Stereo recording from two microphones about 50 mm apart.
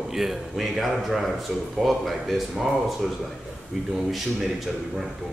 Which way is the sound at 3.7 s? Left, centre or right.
Centre.